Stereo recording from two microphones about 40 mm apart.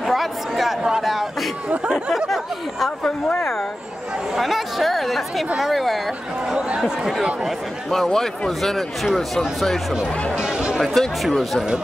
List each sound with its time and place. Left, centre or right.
0.0 s chatter: centre
1.0 s a sound: centre
2.2 s a sound: centre
4.4 s speech: centre
7.9 s speech: centre
10.3 s music: right
10.8 s speech: centre